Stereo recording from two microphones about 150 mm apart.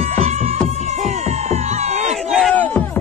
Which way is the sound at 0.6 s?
45° right (ahead or behind).